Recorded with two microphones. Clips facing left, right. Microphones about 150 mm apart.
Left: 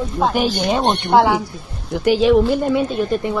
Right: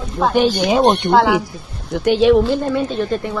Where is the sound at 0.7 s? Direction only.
Centre (ahead or behind).